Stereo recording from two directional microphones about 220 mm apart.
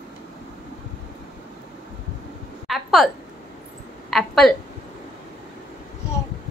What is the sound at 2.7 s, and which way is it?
Speech, centre (ahead or behind).